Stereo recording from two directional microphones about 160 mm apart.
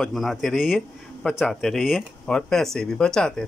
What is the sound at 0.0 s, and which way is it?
A man's voice, centre (ahead or behind).